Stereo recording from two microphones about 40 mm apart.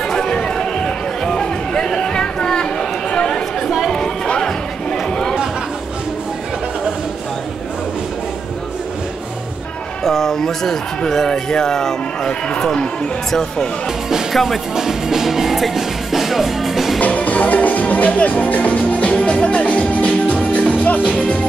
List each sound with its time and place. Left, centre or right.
0.1 s run: centre
4.3 s music: centre
10.0 s a sound: centre
11.1 s speech: centre
12.3 s speech: left
13.3 s speech: centre
14.3 s music: centre
14.8 s music: centre
17.0 s music: left